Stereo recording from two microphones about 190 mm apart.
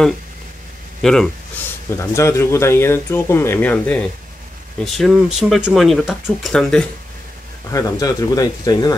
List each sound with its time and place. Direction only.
1.0 s speech: 5° left (ahead or behind)
2.0 s speech: 15° left (ahead or behind)
7.7 s speech: 20° left (ahead or behind)